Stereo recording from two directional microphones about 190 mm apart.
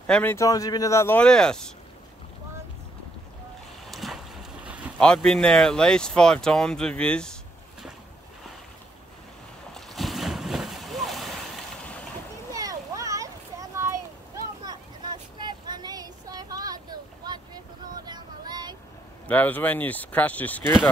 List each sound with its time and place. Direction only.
0.0 s speech: 10° left (ahead or behind)
3.9 s a sound: centre (ahead or behind)
5.0 s speech: 5° left (ahead or behind)
9.8 s boat: centre (ahead or behind)
12.5 s a sound: 20° right (ahead or behind)
18.0 s child singing: 20° right (ahead or behind)
19.2 s speech: 10° left (ahead or behind)